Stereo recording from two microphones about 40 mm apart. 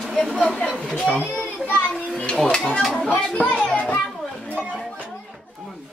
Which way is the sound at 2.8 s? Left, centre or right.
Centre.